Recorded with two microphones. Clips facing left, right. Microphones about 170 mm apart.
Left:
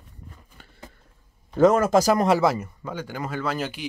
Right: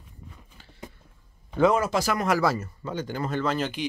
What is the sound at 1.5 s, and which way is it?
Speech, 45° left (ahead or behind).